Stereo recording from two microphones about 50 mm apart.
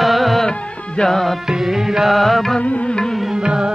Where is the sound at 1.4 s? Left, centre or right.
Centre.